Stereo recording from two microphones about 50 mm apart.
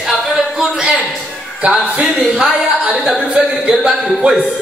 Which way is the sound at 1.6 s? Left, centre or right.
Right.